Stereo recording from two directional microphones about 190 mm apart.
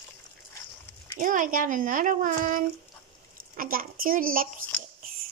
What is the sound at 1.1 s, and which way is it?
Speech, 45° right (ahead or behind).